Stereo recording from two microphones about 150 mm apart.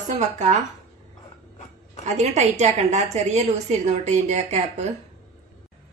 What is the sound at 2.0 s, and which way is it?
A woman's voice, 50° right (ahead or behind).